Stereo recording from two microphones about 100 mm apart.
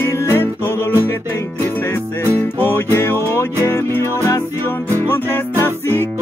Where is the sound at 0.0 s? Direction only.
20° left (ahead or behind).